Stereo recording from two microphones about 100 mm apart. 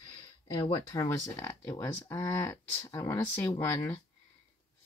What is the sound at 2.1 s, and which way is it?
Speech, 25° left (ahead or behind).